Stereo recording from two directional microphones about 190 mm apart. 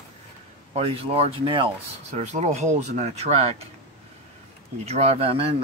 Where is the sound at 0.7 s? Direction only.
30° right (ahead or behind).